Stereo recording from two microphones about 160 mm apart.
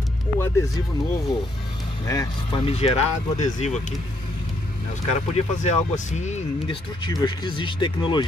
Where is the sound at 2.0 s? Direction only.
20° left (ahead or behind).